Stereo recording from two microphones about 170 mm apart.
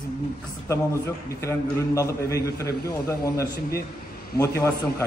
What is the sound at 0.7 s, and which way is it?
A man's voice, 15° left (ahead or behind).